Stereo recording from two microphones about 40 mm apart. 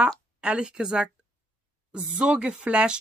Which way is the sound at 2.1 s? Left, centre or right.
Right.